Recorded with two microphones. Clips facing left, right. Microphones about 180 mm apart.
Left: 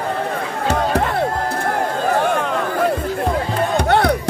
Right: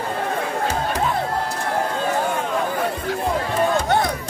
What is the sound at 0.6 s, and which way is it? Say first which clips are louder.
Music: left 7 dB; 70° left (ahead or behind).